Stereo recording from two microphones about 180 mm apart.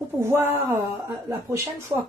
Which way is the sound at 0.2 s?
15° right (ahead or behind).